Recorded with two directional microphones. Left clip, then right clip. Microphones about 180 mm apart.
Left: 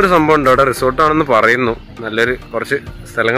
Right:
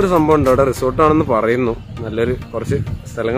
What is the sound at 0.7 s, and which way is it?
Speech, 10° left (ahead or behind).